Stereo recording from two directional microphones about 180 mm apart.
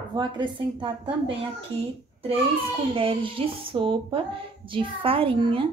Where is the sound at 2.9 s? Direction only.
30° right (ahead or behind).